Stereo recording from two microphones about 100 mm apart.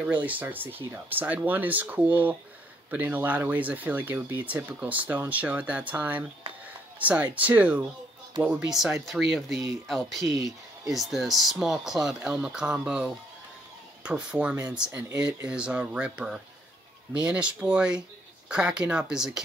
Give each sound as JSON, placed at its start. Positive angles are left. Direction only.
{"t": 0.0, "sound": "speech", "side_deg": -15}
{"t": 9.0, "sound": "speech", "side_deg": 0}